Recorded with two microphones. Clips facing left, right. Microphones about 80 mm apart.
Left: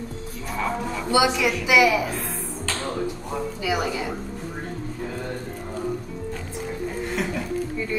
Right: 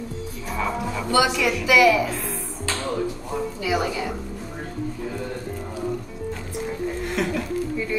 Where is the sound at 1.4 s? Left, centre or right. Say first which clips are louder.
Right 1 dB; centre.